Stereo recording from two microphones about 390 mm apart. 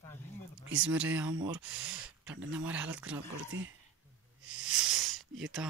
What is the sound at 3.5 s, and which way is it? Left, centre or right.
Speech, right.